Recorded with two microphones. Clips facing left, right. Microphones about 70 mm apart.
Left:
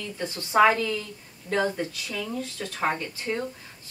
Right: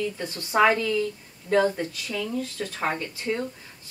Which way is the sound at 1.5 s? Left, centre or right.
Left.